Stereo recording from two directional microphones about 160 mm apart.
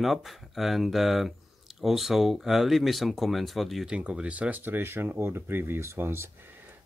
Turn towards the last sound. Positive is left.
turn(degrees=-15)  # may be behind; listen again after turning